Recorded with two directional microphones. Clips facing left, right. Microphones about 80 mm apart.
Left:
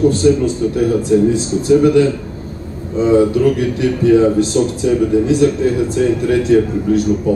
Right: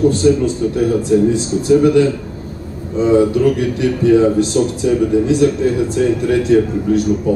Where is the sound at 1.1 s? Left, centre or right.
Left.